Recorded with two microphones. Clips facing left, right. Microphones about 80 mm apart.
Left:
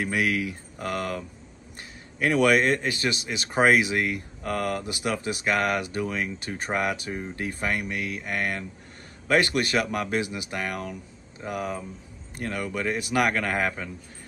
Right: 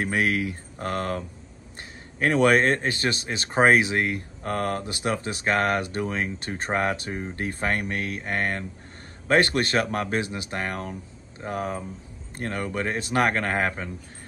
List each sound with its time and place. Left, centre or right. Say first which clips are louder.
0.0 s speech: right 1 dB; right